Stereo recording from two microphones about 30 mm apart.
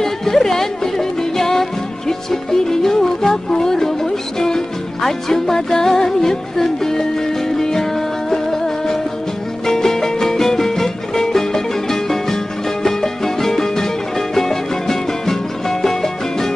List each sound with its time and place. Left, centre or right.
0.0 s music: centre
3.4 s speech: centre
8.3 s music: centre